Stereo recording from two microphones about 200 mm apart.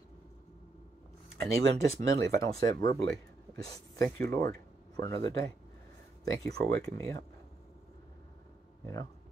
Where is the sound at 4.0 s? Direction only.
15° left (ahead or behind).